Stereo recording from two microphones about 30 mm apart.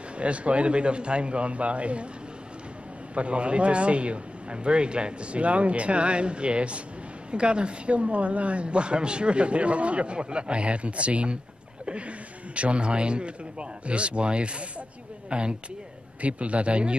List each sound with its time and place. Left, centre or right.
0.2 s speech: right
3.2 s a man's voice: right
12.5 s a man's voice: right
16.2 s speech: right